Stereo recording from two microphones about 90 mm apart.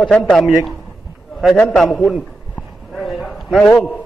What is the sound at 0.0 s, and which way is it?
Speech, 10° left (ahead or behind).